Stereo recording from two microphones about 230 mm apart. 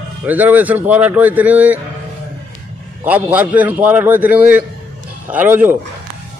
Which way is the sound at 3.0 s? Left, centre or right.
Centre.